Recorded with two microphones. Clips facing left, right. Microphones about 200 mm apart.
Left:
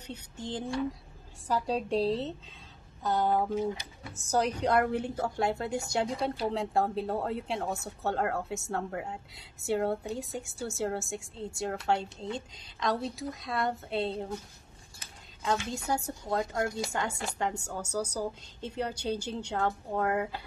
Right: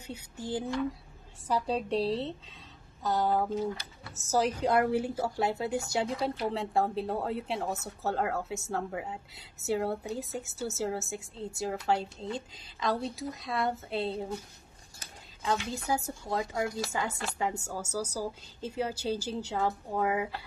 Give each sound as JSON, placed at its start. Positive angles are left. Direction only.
{"t": 0.0, "sound": "a sound", "side_deg": -10}
{"t": 1.5, "sound": "speech", "side_deg": 0}
{"t": 3.0, "sound": "a sound", "side_deg": -5}
{"t": 3.3, "sound": "speech", "side_deg": 20}
{"t": 4.3, "sound": "speech", "side_deg": -5}
{"t": 15.4, "sound": "speech", "side_deg": 0}